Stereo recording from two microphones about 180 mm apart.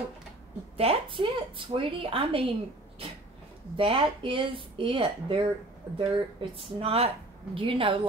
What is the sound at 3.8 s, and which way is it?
A woman's voice, 30° right (ahead or behind).